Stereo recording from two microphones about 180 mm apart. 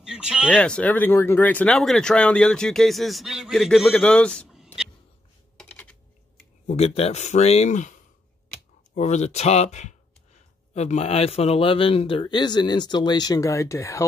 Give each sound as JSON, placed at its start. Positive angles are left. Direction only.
{"t": 0.0, "sound": "a sound", "side_deg": -5}
{"t": 0.5, "sound": "speech", "side_deg": 5}
{"t": 5.6, "sound": "typing", "side_deg": 10}
{"t": 6.7, "sound": "a man's voice", "side_deg": 35}